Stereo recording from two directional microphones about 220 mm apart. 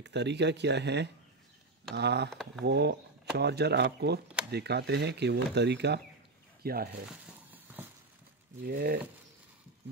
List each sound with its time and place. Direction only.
0.0 s speech: 50° right (ahead or behind)
8.6 s speech: 45° right (ahead or behind)